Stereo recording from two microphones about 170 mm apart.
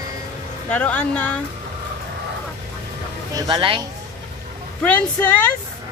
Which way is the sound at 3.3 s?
25° right (ahead or behind).